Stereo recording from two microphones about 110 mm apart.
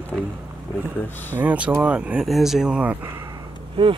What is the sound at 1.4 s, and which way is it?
Speech, 10° right (ahead or behind).